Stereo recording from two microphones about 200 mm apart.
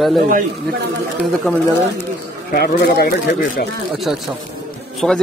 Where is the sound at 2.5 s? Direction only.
55° left (ahead or behind).